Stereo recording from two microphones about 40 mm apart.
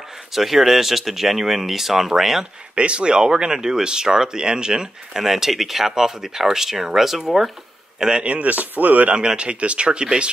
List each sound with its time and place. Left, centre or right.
0.3 s speech: centre
2.7 s speech: right
5.2 s speech: centre
8.2 s speech: right
9.1 s speech: right